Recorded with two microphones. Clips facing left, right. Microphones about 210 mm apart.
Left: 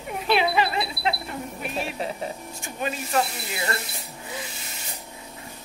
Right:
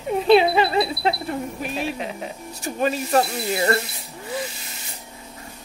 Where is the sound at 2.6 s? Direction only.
40° right (ahead or behind).